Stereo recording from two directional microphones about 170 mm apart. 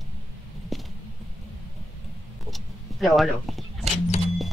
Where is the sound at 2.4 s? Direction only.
Centre (ahead or behind).